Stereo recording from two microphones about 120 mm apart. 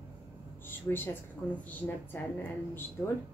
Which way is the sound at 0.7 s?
15° left (ahead or behind).